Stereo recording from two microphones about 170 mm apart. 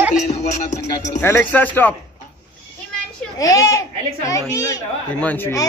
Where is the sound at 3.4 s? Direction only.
20° left (ahead or behind).